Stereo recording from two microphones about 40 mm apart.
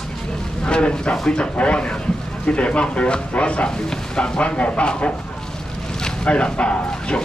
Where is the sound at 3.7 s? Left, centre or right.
Centre.